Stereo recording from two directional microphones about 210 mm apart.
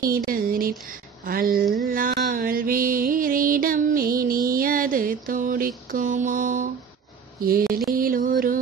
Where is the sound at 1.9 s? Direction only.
45° right (ahead or behind).